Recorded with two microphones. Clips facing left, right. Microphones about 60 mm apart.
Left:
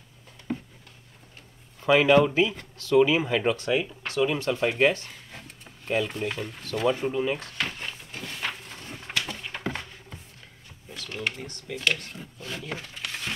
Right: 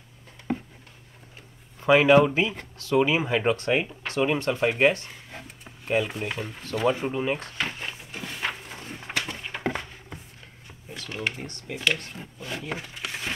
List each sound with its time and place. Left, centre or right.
0.5 s writing: right
1.8 s speech: right
3.5 s speech: right
4.5 s speech: centre
5.3 s a sound: centre
6.8 s speech: centre
7.5 s a sound: centre
11.1 s speech: centre
11.4 s speech: right
11.7 s speech: centre
12.6 s a sound: centre